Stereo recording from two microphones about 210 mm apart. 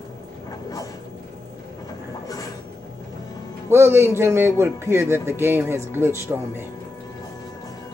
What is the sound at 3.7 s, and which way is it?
A man's voice, 10° right (ahead or behind).